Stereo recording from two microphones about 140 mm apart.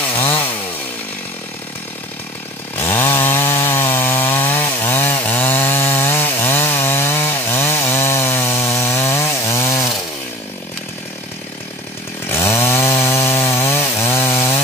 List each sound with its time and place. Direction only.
0.0 s chainsaw: 15° left (ahead or behind)
2.8 s chainsaw: 15° left (ahead or behind)
12.3 s chainsaw: 20° left (ahead or behind)